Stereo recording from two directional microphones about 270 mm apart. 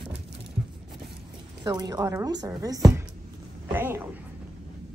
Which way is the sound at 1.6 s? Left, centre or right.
Centre.